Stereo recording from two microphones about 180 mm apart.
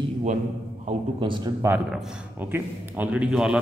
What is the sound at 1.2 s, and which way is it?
Speech, 25° right (ahead or behind).